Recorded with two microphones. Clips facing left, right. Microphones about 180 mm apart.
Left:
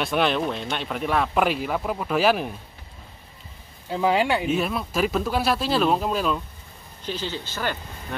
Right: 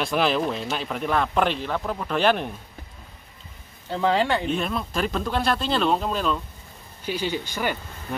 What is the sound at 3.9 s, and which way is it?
Speech, 5° left (ahead or behind).